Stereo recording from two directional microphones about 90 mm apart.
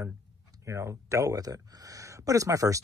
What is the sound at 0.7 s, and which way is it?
Speech, 35° right (ahead or behind).